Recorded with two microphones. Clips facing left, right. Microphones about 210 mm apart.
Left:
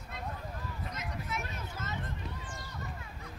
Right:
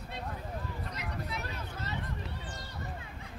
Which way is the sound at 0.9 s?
35° right (ahead or behind).